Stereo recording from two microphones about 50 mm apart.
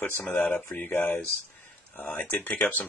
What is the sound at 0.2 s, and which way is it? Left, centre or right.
Speech, centre.